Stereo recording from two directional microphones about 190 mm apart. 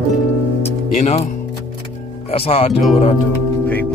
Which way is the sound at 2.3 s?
30° left (ahead or behind).